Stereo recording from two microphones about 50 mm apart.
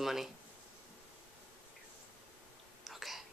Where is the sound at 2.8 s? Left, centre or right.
Centre.